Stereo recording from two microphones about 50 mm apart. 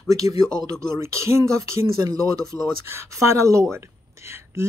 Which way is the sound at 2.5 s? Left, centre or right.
Left.